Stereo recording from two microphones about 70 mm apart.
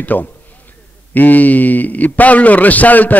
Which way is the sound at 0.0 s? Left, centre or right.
Left.